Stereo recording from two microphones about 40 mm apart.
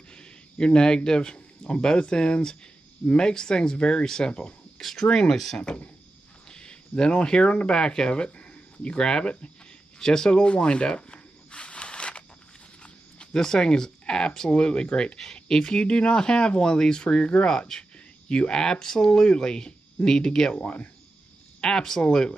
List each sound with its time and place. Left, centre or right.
0.1 s speech: left
4.7 s speech: centre
5.0 s speech: left
5.3 s speech: centre
6.5 s speech: left
8.9 s speech: centre
9.9 s a sound: centre
13.4 s speech: centre
17.5 s speech: centre
19.0 s speech: left
20.5 s speech: left
21.5 s speech: centre